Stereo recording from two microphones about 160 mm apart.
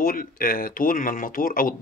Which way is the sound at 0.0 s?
60° left (ahead or behind).